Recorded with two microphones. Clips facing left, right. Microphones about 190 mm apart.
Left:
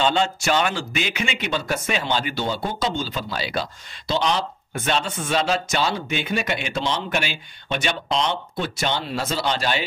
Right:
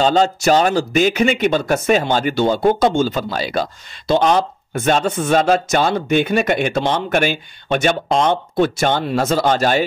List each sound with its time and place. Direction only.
0.0 s speech: 40° right (ahead or behind)